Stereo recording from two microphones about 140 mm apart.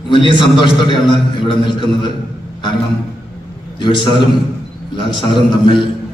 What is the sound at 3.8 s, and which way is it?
Speech, 35° left (ahead or behind).